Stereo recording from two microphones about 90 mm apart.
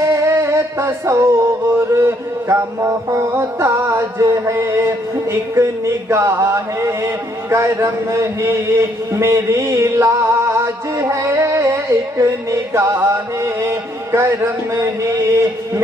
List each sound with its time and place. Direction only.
0.1 s music: 30° right (ahead or behind)